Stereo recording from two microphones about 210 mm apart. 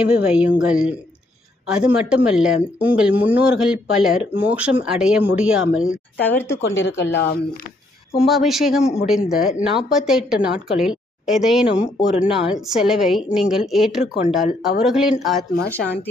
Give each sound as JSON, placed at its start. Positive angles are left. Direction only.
{"t": 0.0, "sound": "speech", "side_deg": -5}
{"t": 6.2, "sound": "speech", "side_deg": 10}
{"t": 6.6, "sound": "speech", "side_deg": 60}
{"t": 8.3, "sound": "speech", "side_deg": 0}